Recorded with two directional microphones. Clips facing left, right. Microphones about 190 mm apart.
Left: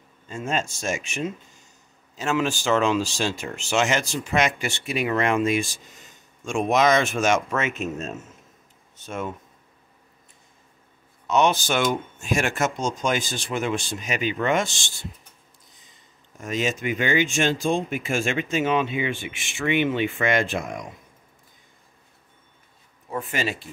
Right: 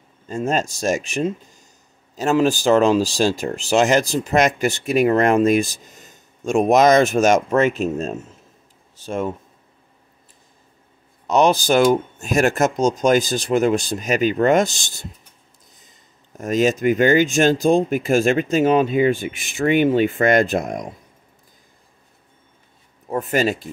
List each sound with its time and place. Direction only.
0.3 s speech: 40° right (ahead or behind)
11.2 s speech: 35° right (ahead or behind)
16.3 s speech: 40° right (ahead or behind)
23.0 s speech: 40° right (ahead or behind)